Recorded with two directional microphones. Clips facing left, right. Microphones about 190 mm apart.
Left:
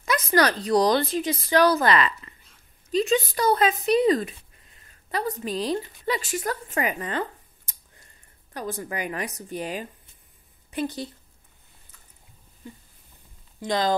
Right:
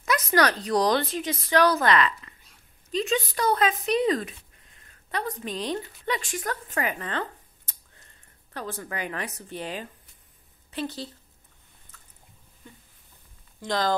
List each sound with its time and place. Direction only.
0.0 s a woman's voice: centre (ahead or behind)
13.6 s speech: 15° left (ahead or behind)